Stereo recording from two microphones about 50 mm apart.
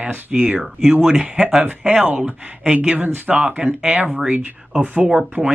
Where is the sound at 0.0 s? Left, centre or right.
Right.